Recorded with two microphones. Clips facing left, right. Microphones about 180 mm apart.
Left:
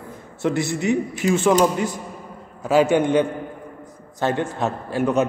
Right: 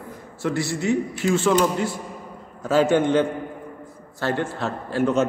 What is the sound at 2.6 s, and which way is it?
A man's voice, 15° left (ahead or behind).